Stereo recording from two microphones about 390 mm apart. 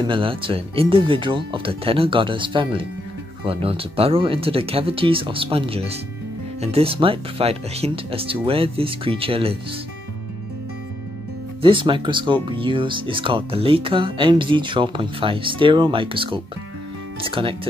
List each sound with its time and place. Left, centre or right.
0.0 s speech: centre
11.6 s speech: centre